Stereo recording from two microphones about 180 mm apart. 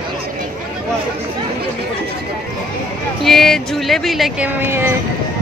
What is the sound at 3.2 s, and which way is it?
Speech, centre (ahead or behind).